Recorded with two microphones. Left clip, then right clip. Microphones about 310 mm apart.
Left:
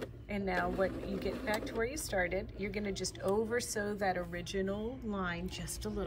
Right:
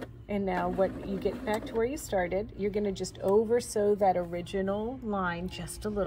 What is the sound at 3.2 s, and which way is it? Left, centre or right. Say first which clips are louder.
Speech: right 8 dB; left.